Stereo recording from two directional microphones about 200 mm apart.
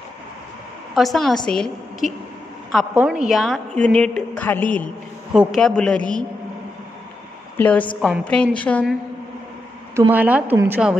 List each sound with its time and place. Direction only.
0.9 s a woman's voice: centre (ahead or behind)
7.5 s a woman's voice: 10° left (ahead or behind)
9.9 s a woman's voice: 10° right (ahead or behind)